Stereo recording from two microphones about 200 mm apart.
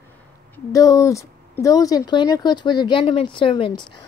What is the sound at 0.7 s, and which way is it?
Speech, 15° left (ahead or behind).